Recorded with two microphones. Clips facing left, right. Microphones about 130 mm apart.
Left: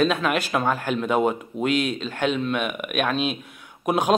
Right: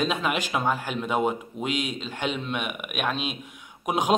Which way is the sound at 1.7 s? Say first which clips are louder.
Left 6 dB; 65° left (ahead or behind).